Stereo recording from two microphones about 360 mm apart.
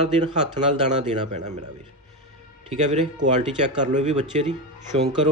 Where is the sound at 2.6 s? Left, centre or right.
Centre.